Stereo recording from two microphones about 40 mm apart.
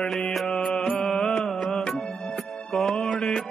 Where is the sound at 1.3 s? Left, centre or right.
Left.